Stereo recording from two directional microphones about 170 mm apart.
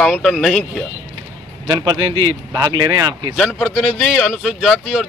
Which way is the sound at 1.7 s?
25° right (ahead or behind).